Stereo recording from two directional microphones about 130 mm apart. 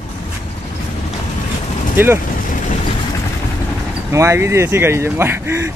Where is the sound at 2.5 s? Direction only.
75° left (ahead or behind).